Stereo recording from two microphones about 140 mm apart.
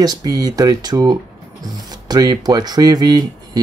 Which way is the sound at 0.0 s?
25° right (ahead or behind).